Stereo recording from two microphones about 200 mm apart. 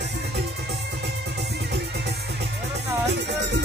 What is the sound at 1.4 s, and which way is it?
Music, 55° right (ahead or behind).